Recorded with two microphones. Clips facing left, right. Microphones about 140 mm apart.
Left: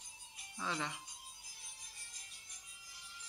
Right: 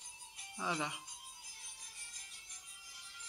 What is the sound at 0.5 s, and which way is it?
Speech, 15° right (ahead or behind).